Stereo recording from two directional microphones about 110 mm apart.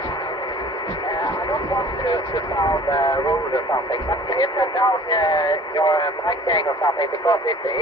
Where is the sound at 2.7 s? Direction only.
35° left (ahead or behind).